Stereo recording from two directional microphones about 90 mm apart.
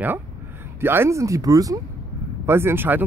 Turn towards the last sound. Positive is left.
turn(degrees=-20)  # may be behind; listen again after turning